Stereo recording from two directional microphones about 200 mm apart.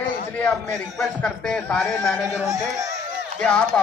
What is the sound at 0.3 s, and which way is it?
Speech, 5° left (ahead or behind).